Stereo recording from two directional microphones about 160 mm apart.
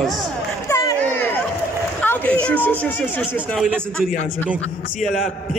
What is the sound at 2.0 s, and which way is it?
A man's voice, 10° left (ahead or behind).